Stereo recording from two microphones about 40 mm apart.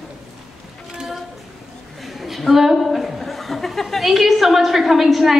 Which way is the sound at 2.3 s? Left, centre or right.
Centre.